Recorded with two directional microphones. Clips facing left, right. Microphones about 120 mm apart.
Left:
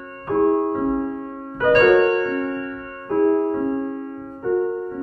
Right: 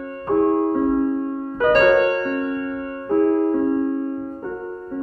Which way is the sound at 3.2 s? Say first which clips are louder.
Left 1 dB; 40° left (ahead or behind).